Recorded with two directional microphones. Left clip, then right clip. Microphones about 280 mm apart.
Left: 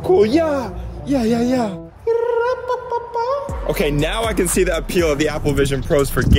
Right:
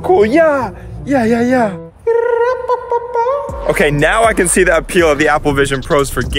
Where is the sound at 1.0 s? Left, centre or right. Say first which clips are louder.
Right 6 dB; centre.